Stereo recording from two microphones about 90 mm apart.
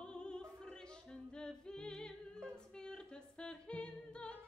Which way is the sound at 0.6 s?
10° left (ahead or behind).